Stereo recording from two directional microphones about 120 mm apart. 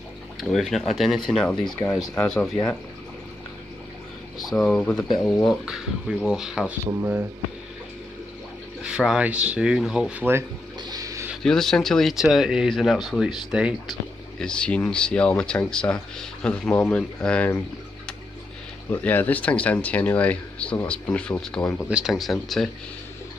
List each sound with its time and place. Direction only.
0.4 s speech: centre (ahead or behind)
4.6 s speech: 10° left (ahead or behind)
8.8 s speech: 5° right (ahead or behind)
10.8 s a sound: 30° right (ahead or behind)
11.4 s speech: 5° left (ahead or behind)
14.4 s speech: 10° left (ahead or behind)
18.9 s speech: 15° left (ahead or behind)
21.8 s speech: 5° right (ahead or behind)